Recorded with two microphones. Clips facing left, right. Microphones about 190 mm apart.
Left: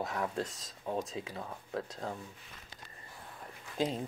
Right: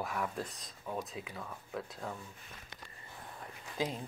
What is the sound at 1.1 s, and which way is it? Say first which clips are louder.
Speech: left 3 dB; 30° left (ahead or behind).